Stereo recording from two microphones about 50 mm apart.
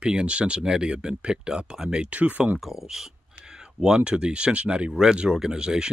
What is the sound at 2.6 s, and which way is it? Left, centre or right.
Speech, centre.